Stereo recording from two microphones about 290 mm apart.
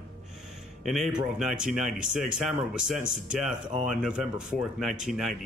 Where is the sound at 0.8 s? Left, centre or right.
Centre.